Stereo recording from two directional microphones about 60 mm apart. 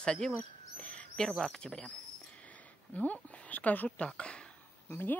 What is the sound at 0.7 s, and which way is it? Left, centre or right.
Bird, left.